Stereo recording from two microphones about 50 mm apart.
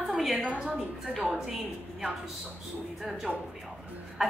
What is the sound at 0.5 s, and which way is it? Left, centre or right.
Speech, right.